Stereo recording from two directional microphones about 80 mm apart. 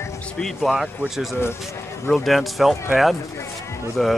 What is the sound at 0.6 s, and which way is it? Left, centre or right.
Speech, centre.